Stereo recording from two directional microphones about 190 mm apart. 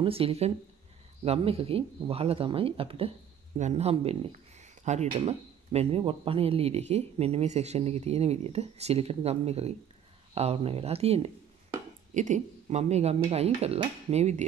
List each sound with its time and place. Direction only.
0.0 s speech: 30° right (ahead or behind)